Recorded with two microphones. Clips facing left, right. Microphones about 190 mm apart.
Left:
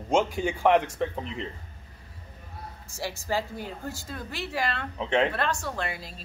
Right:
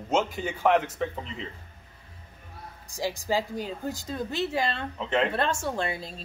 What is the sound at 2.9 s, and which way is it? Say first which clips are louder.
A woman's voice: right 3 dB; 15° right (ahead or behind).